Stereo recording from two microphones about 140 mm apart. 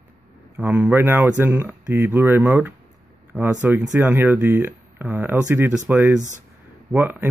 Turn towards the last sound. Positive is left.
turn(degrees=-15)  # may be behind; listen again after turning